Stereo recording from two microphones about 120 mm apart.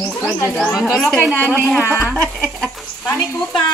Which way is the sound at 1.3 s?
15° right (ahead or behind).